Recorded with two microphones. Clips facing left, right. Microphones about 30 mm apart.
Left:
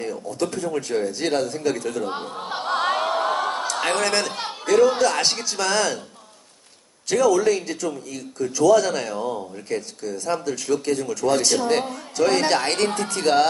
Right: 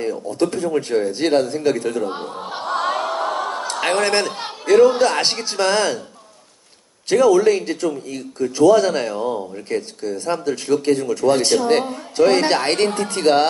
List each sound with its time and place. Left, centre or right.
0.0 s speech: right
2.3 s music: centre
2.7 s a sound: left
3.8 s speech: right
7.1 s speech: right